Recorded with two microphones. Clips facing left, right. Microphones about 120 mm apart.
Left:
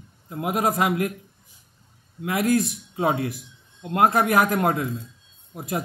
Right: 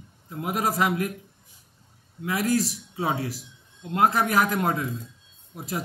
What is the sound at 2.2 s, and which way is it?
Speech, 55° left (ahead or behind).